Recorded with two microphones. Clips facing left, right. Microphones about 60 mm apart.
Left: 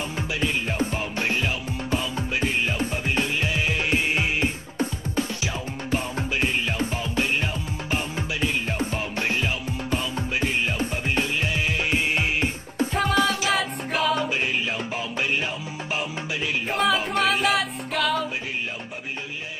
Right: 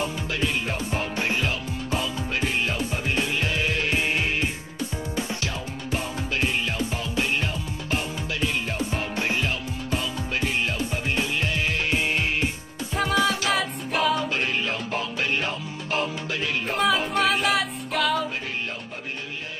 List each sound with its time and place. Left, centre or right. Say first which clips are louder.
3.2 s music: even; centre
11.1 s music: left 1 dB; centre
12.9 s music: even; centre
16.7 s music: even; centre